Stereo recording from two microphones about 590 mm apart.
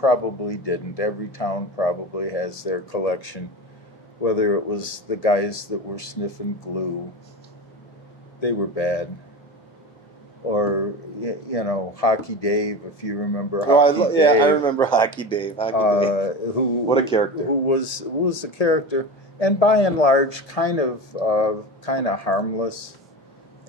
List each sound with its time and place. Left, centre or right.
0.0 s speech: left
8.4 s speech: left
10.5 s speech: left
13.7 s a man's voice: centre
15.7 s speech: left
16.8 s a man's voice: centre
18.4 s speech: left